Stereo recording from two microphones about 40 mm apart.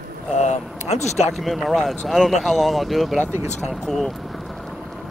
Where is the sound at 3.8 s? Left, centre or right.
Centre.